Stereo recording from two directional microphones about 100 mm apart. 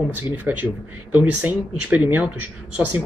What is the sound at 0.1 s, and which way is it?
Speech, 15° right (ahead or behind).